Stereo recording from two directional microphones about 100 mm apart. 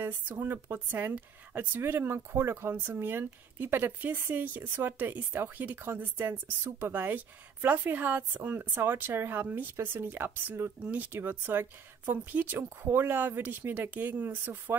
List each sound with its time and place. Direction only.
0.0 s speech: 20° right (ahead or behind)